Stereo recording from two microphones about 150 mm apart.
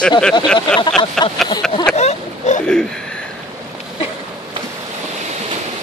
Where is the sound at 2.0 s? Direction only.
50° left (ahead or behind).